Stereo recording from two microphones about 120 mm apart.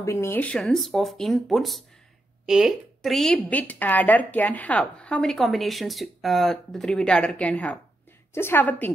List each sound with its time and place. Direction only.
0.0 s a woman's voice: 25° left (ahead or behind)